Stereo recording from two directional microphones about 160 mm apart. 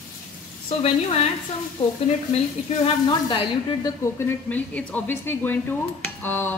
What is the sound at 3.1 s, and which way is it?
Speech, 30° left (ahead or behind).